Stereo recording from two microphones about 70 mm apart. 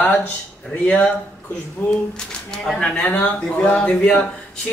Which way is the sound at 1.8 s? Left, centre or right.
Left.